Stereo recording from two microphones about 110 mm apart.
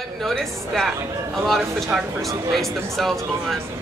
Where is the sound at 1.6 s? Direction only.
25° right (ahead or behind).